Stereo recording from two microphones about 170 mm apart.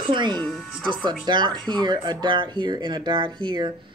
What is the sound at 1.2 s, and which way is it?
Speech, 25° right (ahead or behind).